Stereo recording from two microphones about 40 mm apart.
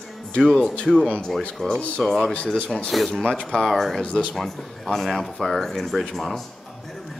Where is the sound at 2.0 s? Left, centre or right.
Centre.